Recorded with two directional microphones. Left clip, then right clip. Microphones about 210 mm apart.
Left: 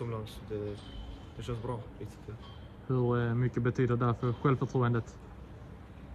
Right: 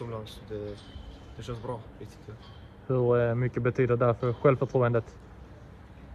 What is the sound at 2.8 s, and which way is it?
Speech, 20° left (ahead or behind).